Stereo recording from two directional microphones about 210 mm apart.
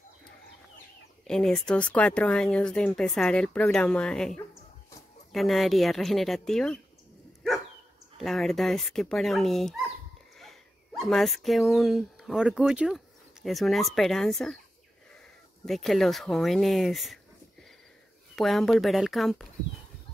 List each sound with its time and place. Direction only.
1.2 s speech: centre (ahead or behind)
8.2 s speech: centre (ahead or behind)
15.6 s speech: centre (ahead or behind)
18.3 s speech: centre (ahead or behind)